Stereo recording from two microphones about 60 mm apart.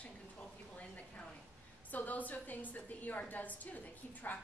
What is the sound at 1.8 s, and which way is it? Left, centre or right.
A woman's voice, left.